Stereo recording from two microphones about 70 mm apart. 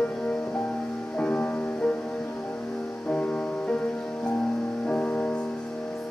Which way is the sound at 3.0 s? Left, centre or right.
Centre.